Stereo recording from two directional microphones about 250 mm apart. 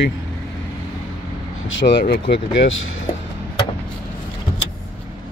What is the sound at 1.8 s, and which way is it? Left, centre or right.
Speech, left.